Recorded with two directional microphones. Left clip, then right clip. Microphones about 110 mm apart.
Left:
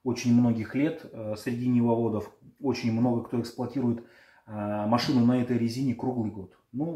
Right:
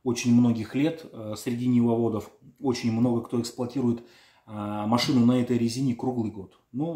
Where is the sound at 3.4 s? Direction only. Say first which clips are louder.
Right 2 dB; 15° right (ahead or behind).